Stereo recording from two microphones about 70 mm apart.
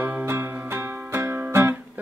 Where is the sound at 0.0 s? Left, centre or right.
Right.